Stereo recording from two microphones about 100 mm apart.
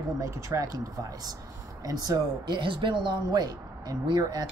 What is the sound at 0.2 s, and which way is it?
Speech, 35° right (ahead or behind).